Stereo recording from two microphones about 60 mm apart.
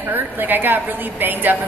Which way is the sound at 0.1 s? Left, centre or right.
Right.